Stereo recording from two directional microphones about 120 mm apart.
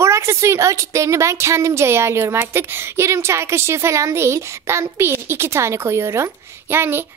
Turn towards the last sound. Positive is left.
turn(degrees=-20)  # may be behind; listen again after turning